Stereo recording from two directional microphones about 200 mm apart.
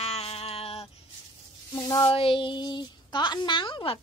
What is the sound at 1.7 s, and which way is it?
Speech, 15° left (ahead or behind).